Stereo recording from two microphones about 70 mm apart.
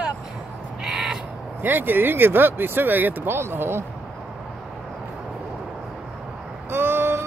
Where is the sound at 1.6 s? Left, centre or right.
Right.